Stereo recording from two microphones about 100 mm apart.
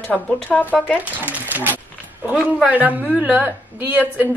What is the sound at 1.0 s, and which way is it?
A woman's voice, 15° right (ahead or behind).